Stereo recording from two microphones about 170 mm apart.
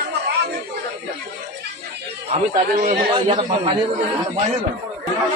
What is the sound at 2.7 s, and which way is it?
A man's voice, 40° right (ahead or behind).